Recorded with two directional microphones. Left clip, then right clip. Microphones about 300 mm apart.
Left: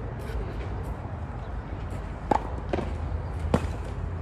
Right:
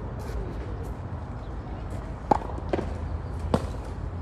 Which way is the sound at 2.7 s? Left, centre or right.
Right.